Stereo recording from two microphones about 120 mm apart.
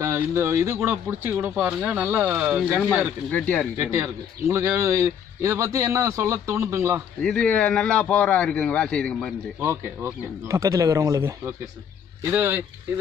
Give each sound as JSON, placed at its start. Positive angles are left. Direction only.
{"t": 0.0, "sound": "a man's voice", "side_deg": -25}
{"t": 3.3, "sound": "a man's voice", "side_deg": 10}
{"t": 3.7, "sound": "a man's voice", "side_deg": -20}
{"t": 7.2, "sound": "a man's voice", "side_deg": 10}
{"t": 9.6, "sound": "a man's voice", "side_deg": -20}